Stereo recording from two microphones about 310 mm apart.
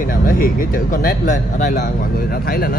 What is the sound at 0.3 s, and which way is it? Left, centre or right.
Speech, left.